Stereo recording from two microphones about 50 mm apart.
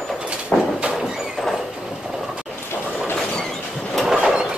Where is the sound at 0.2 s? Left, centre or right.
Right.